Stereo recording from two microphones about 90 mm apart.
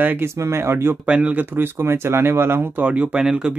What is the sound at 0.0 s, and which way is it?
Speech, 25° right (ahead or behind).